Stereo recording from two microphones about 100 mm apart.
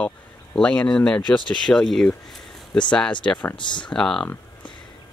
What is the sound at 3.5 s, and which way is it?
Speech, 50° left (ahead or behind).